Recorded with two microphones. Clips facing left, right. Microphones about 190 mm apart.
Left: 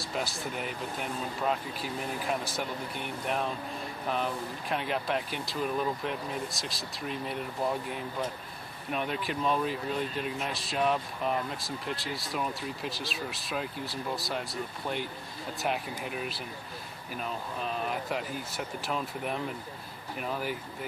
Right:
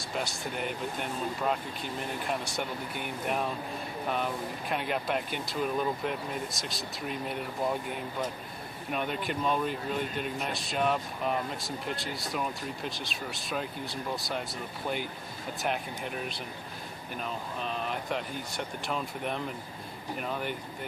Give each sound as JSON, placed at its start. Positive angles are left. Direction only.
{"t": 0.1, "sound": "speech", "side_deg": 0}
{"t": 8.9, "sound": "speech", "side_deg": 0}
{"t": 15.6, "sound": "speech", "side_deg": 0}